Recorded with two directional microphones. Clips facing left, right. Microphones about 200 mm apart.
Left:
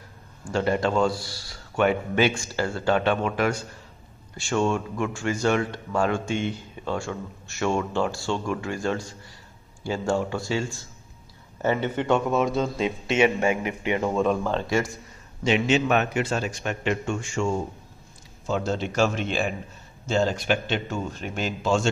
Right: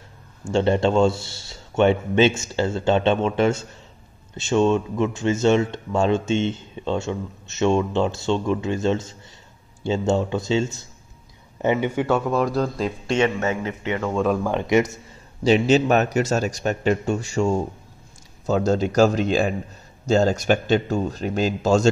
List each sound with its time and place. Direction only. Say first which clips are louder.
0.5 s speech: right 5 dB; 25° right (ahead or behind); by 12.2 s 10° right (ahead or behind)
12.3 s a man's voice: right 2 dB; centre (ahead or behind)
14.1 s speech: right 2 dB; 5° right (ahead or behind); by 15.0 s 20° right (ahead or behind)
15.4 s speech: right 5 dB; 35° right (ahead or behind)